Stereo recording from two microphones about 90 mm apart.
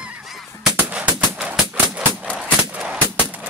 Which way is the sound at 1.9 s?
10° right (ahead or behind).